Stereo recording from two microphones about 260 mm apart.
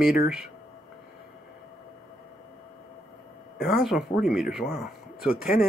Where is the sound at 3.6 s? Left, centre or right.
Centre.